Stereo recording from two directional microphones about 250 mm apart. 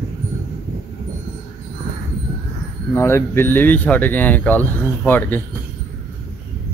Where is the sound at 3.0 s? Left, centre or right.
Centre.